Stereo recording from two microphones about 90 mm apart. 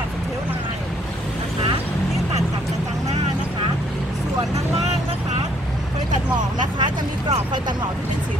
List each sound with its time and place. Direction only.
6.8 s vehicle: 60° right (ahead or behind)